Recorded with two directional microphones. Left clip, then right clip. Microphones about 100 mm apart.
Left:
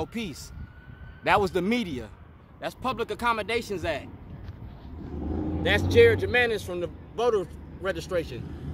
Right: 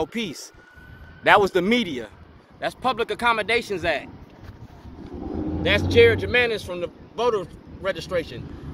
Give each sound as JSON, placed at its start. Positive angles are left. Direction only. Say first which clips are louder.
{"t": 0.0, "sound": "speech", "louder": "right 6 dB", "side_deg": -20}
{"t": 2.6, "sound": "speech", "louder": "right 6 dB", "side_deg": 5}
{"t": 5.6, "sound": "speech", "louder": "right 3 dB", "side_deg": 35}